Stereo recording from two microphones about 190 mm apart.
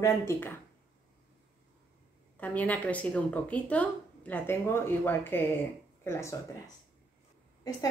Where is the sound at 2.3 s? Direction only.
10° left (ahead or behind).